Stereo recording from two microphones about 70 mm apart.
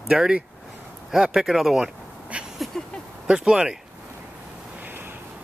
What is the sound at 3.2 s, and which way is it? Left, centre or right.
Speech, centre.